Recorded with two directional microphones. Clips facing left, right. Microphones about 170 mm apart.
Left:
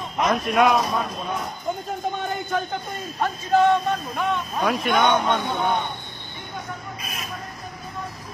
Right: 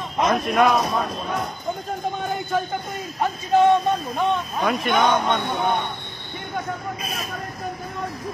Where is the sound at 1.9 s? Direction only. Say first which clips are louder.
Right 1 dB; centre (ahead or behind).